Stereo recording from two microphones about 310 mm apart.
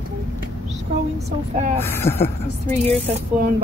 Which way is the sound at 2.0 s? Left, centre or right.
Centre.